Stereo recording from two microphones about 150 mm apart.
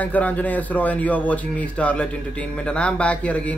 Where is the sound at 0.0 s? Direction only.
10° left (ahead or behind).